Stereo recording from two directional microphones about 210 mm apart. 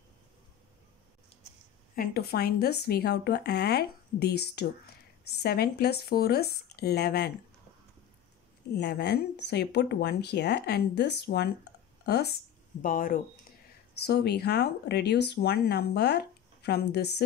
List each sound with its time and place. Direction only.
2.0 s speech: 50° left (ahead or behind)
8.7 s speech: 55° left (ahead or behind)
12.8 s speech: 40° left (ahead or behind)
13.9 s speech: 50° left (ahead or behind)